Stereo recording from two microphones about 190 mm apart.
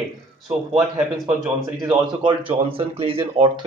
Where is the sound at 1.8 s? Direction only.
25° right (ahead or behind).